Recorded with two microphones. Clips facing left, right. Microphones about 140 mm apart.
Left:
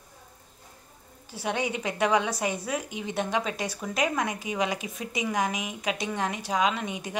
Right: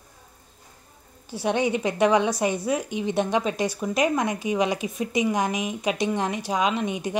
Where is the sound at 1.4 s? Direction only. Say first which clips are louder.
Right 6 dB; 25° right (ahead or behind).